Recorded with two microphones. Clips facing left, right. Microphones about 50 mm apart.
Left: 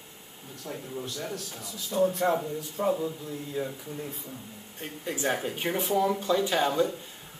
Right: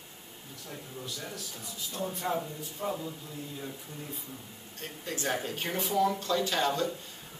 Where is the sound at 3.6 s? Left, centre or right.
Left.